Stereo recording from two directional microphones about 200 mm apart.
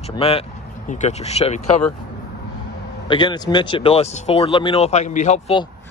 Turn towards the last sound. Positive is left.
turn(degrees=30)  # may be behind; listen again after turning